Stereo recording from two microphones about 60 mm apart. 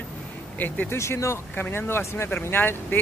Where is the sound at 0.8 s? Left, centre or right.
Left.